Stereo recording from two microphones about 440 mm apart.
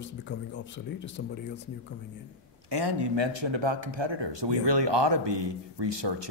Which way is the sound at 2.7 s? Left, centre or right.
Right.